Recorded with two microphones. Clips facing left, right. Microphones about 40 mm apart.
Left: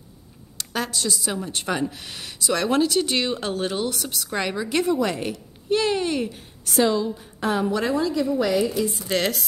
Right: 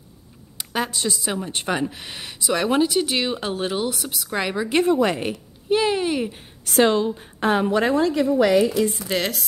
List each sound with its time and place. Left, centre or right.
0.6 s speech: right
4.6 s speech: right
5.7 s a sound: centre
6.6 s a woman's voice: right
8.4 s a woman's voice: right
9.1 s a woman's voice: centre